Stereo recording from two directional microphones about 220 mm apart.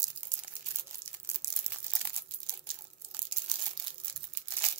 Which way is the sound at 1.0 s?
30° right (ahead or behind).